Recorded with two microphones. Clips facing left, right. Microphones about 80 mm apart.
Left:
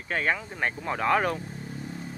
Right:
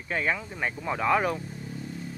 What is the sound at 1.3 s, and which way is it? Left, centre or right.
Vehicle, left.